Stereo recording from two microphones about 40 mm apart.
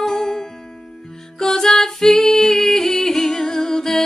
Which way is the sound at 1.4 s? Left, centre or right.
Centre.